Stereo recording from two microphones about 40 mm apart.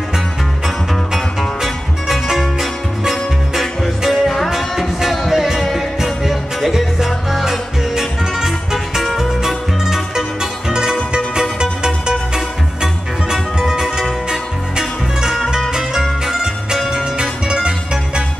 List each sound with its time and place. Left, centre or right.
1.6 s music: centre; by 18.2 s right